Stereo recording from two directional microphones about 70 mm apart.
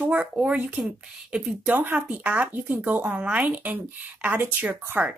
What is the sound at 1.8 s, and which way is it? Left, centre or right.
Speech, right.